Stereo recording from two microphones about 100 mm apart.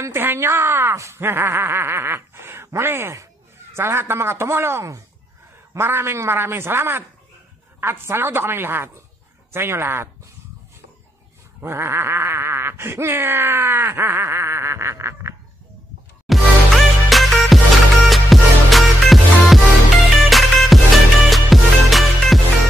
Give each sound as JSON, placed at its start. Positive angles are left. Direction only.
{"t": 0.0, "sound": "groan", "side_deg": -25}
{"t": 11.6, "sound": "groan", "side_deg": -25}
{"t": 16.3, "sound": "music", "side_deg": 0}